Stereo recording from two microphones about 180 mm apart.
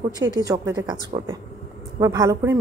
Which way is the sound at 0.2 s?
20° right (ahead or behind).